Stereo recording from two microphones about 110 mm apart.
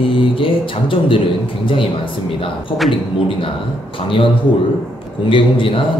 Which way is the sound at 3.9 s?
55° left (ahead or behind).